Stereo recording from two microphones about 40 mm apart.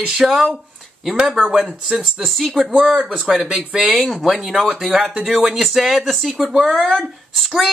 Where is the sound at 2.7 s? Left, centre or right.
Right.